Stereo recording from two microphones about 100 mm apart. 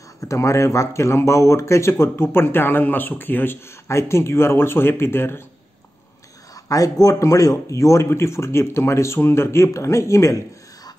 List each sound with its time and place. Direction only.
0.2 s speech: 30° left (ahead or behind)
6.5 s speech: 35° left (ahead or behind)